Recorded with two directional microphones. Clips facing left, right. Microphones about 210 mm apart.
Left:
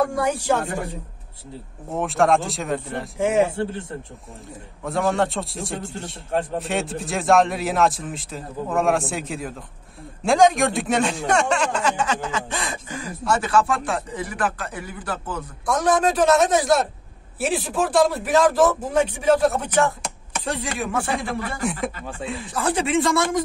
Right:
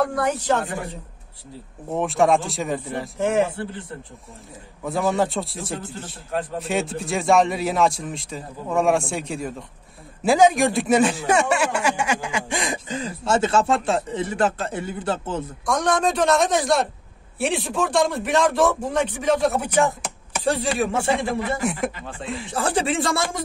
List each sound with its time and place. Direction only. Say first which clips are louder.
0.0 s speech: even; 10° left (ahead or behind)
1.9 s speech: right 1 dB; centre (ahead or behind)
3.2 s speech: left 1 dB; 10° left (ahead or behind)
4.8 s speech: even; centre (ahead or behind); by 15.4 s 25° right (ahead or behind)
15.6 s speech: left 2 dB; 5° left (ahead or behind)
19.6 s speech: even; 15° right (ahead or behind)
20.4 s speech: right 5 dB; 30° right (ahead or behind)